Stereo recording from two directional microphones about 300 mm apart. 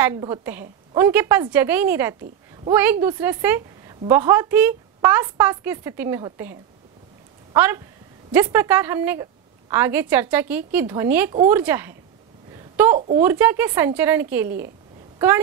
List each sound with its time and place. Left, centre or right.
0.0 s a woman's voice: centre
7.5 s a woman's voice: centre
12.5 s a sound: centre
12.9 s speech: right
13.2 s a woman's voice: centre